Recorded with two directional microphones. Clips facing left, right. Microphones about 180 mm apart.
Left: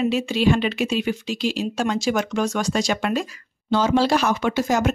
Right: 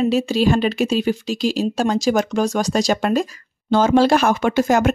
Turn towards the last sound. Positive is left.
turn(degrees=-55)  # may be behind; listen again after turning